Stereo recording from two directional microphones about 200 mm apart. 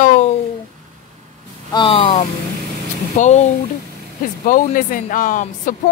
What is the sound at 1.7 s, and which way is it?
A woman's voice, 25° left (ahead or behind).